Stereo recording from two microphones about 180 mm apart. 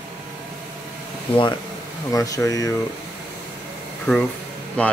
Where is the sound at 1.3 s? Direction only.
25° left (ahead or behind).